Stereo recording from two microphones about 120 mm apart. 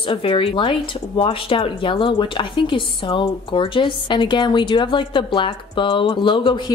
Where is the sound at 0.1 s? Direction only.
50° left (ahead or behind).